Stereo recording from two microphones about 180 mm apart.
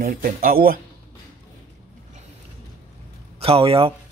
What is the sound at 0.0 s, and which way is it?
Speech, 50° right (ahead or behind).